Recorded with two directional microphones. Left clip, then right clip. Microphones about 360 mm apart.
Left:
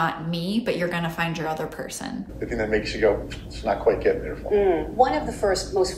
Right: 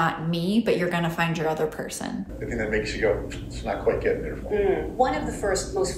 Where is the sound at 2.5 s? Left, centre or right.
Left.